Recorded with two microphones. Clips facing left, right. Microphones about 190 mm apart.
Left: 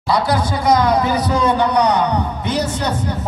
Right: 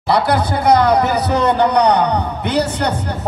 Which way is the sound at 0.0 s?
60° right (ahead or behind).